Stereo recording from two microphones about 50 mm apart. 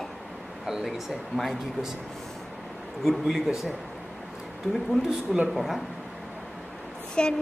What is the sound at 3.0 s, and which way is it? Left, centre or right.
Speech, centre.